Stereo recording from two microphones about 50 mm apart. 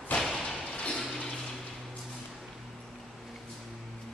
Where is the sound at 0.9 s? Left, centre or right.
Centre.